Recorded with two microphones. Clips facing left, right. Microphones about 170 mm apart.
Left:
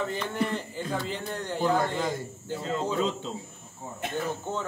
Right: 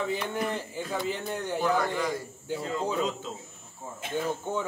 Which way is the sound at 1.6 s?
25° left (ahead or behind).